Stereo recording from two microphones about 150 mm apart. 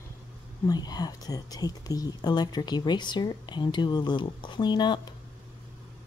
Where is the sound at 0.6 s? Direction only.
25° left (ahead or behind).